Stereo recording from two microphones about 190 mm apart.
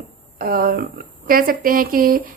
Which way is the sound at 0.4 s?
50° right (ahead or behind).